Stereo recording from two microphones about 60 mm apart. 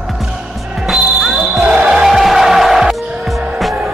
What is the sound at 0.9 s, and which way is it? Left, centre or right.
Music, centre.